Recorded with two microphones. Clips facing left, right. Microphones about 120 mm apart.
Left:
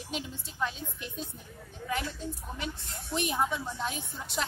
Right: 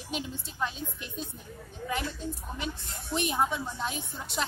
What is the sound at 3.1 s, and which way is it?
Speech, 20° right (ahead or behind).